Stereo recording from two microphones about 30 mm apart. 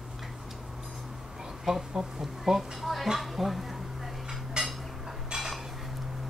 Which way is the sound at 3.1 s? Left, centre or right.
Centre.